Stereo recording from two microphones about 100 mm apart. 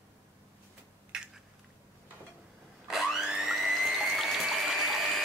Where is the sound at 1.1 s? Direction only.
10° right (ahead or behind).